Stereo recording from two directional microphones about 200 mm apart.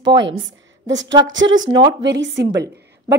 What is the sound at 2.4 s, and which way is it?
Speech, 20° right (ahead or behind).